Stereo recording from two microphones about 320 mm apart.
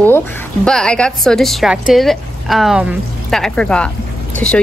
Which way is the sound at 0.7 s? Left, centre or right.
Centre.